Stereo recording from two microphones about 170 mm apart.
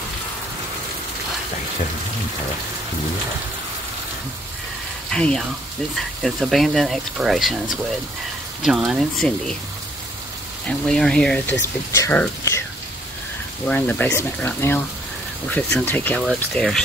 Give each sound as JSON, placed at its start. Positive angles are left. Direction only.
{"t": 5.1, "sound": "speech", "side_deg": 5}
{"t": 8.6, "sound": "speech", "side_deg": 0}
{"t": 10.9, "sound": "speech", "side_deg": 5}
{"t": 13.7, "sound": "speech", "side_deg": 10}